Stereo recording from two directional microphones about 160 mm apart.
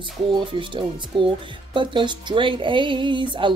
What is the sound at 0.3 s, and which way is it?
Speech, 30° right (ahead or behind).